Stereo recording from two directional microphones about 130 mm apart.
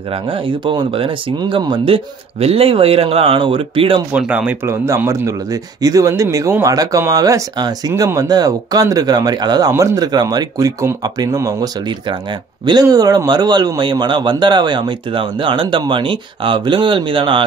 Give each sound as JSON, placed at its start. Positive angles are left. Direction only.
{"t": 0.3, "sound": "a man's voice", "side_deg": -40}
{"t": 4.2, "sound": "speech", "side_deg": -10}
{"t": 4.8, "sound": "a man's voice", "side_deg": -20}